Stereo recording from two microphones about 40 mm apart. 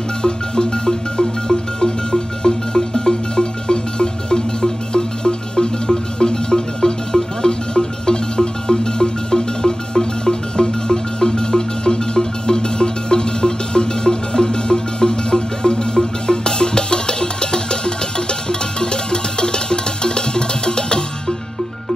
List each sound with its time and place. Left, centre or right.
0.2 s music: left